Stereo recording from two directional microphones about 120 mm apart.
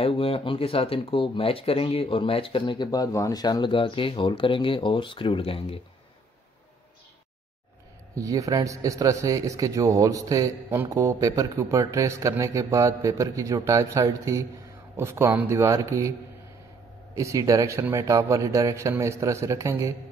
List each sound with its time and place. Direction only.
0.0 s speech: 50° left (ahead or behind)
2.6 s speech: 35° left (ahead or behind)
8.1 s a man's voice: 30° right (ahead or behind)
17.1 s a man's voice: 25° right (ahead or behind)